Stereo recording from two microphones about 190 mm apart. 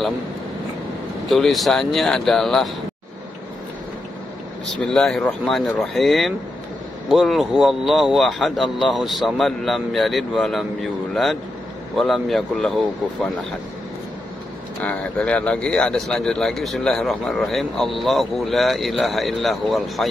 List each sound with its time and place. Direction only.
1.3 s speech: centre (ahead or behind)
4.8 s speech: 5° left (ahead or behind)
14.8 s speech: 5° left (ahead or behind)